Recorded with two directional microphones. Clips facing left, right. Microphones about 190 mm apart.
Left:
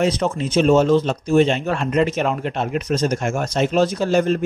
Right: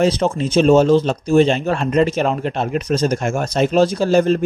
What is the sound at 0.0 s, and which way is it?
Speech, 30° right (ahead or behind).